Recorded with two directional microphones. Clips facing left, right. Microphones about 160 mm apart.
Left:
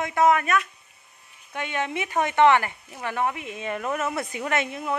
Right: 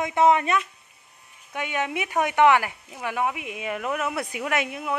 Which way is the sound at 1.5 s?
10° right (ahead or behind).